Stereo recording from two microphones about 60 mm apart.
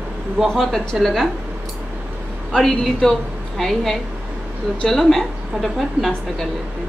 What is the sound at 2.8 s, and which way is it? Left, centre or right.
A woman's voice, centre.